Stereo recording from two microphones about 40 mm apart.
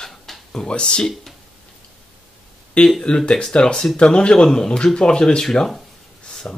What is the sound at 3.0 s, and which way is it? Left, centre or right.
Speech, left.